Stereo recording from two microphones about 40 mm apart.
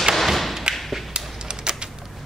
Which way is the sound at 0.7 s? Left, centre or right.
Centre.